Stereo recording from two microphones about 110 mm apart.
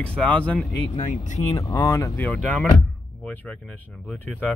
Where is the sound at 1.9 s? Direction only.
30° left (ahead or behind).